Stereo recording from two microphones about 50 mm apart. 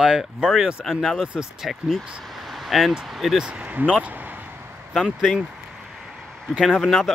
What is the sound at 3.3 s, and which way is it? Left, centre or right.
Speech, right.